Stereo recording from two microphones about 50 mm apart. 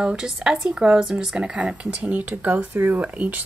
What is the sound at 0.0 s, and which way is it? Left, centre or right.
Speech, centre.